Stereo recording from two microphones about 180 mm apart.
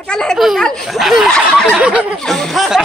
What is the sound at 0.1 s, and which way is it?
Speech, 5° left (ahead or behind).